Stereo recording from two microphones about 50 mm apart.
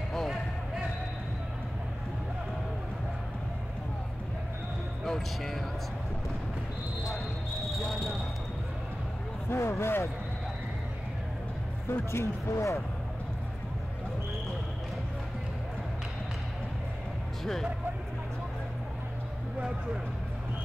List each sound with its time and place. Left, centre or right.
0.1 s a sound: centre
5.0 s speech: centre
7.7 s basketball bounce: centre
9.5 s speech: left
11.9 s speech: left